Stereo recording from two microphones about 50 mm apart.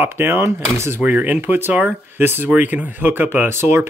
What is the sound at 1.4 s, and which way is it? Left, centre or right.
Speech, right.